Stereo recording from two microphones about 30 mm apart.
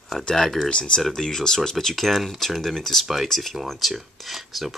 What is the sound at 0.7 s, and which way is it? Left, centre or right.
Speech, left.